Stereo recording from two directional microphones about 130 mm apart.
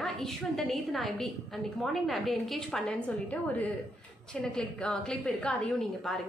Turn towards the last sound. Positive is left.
turn(degrees=5)  # may be behind; listen again after turning